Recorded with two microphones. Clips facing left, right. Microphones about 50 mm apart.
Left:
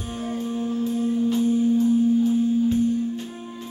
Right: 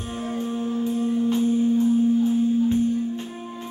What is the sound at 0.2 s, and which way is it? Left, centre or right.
Music, right.